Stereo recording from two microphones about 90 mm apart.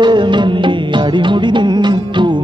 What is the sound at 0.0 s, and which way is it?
Music, 60° right (ahead or behind).